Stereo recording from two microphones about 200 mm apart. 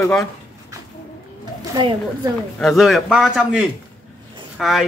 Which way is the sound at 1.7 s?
20° right (ahead or behind).